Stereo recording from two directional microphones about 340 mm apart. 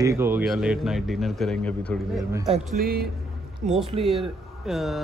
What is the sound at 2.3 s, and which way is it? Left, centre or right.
Speech, centre.